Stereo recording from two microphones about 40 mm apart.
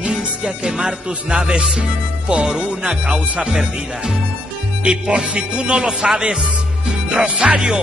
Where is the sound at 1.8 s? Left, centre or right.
Right.